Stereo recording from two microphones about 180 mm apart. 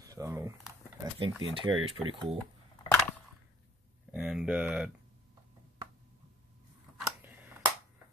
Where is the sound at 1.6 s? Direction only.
30° right (ahead or behind).